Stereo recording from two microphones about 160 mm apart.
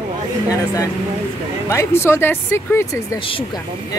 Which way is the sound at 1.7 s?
15° left (ahead or behind).